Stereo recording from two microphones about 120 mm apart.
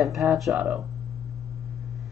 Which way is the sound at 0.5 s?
10° right (ahead or behind).